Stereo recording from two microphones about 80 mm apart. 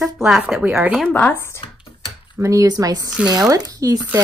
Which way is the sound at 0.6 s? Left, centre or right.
Right.